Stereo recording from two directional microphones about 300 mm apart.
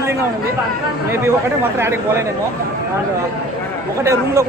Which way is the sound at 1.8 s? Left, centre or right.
Centre.